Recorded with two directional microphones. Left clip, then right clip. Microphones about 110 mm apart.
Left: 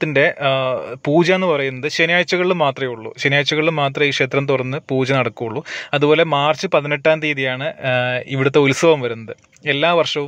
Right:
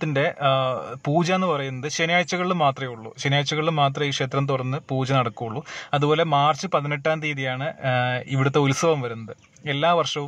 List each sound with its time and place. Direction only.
0.0 s speech: 25° left (ahead or behind)